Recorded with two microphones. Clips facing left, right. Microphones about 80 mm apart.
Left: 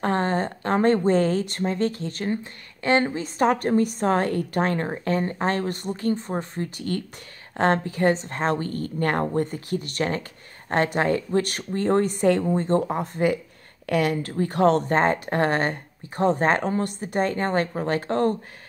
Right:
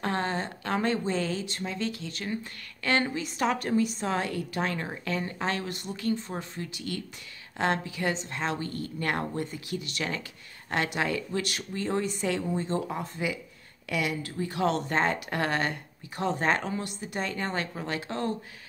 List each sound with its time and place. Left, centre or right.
0.0 s a woman's voice: left
2.8 s a woman's voice: left